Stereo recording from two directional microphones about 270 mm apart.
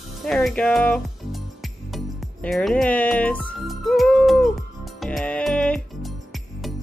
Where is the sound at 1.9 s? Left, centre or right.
Centre.